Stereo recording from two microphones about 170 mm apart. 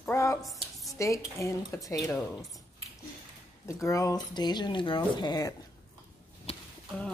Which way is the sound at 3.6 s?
20° left (ahead or behind).